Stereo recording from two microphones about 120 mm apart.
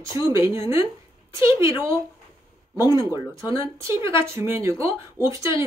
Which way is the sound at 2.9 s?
25° right (ahead or behind).